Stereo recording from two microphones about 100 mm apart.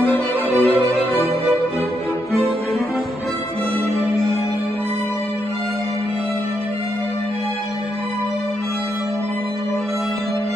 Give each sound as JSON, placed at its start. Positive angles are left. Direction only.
{"t": 0.0, "sound": "music", "side_deg": 20}